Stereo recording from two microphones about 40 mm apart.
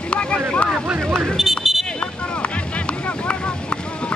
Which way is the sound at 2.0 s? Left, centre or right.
Left.